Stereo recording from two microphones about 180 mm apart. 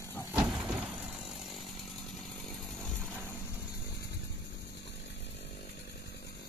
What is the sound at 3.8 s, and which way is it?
Vehicle, 65° left (ahead or behind).